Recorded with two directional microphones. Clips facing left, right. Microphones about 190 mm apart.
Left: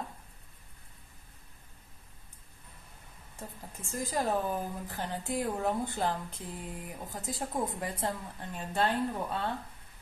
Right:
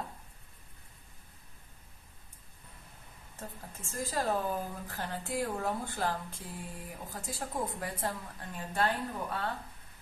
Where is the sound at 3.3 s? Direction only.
15° left (ahead or behind).